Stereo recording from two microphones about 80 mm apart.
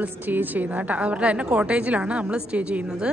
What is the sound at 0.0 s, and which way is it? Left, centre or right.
A woman's voice, right.